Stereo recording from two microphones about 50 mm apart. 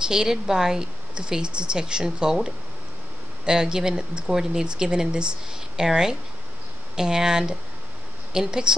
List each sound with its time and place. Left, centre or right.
0.0 s speech: centre